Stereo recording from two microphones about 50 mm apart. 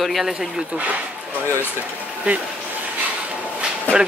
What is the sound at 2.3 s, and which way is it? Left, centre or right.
Speech, right.